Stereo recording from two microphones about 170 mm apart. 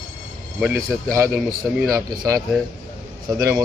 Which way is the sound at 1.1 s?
15° right (ahead or behind).